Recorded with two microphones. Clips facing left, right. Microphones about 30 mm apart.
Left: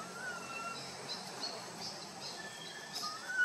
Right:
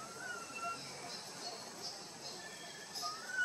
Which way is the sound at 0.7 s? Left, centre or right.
Left.